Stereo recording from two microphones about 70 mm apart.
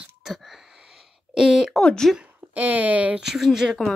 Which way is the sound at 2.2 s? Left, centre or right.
Right.